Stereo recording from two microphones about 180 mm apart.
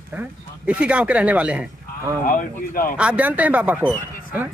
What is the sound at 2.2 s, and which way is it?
Speech, 50° left (ahead or behind).